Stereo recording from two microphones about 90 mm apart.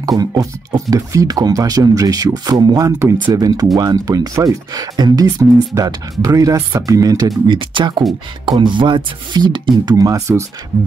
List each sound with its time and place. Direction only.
0.0 s speech: 45° right (ahead or behind)
7.4 s speech: 65° right (ahead or behind)
9.9 s speech: 40° right (ahead or behind)